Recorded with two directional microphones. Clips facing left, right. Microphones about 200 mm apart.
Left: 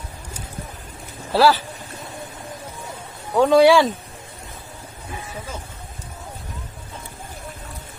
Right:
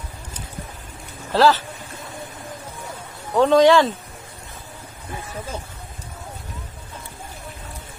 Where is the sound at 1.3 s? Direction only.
10° left (ahead or behind).